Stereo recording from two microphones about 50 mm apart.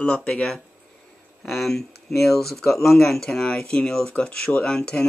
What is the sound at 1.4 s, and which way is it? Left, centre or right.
Speech, centre.